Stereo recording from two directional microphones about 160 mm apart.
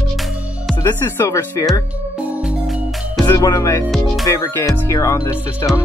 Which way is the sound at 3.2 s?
20° left (ahead or behind).